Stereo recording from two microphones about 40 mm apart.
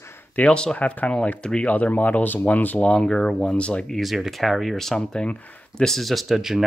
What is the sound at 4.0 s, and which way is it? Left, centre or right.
Speech, centre.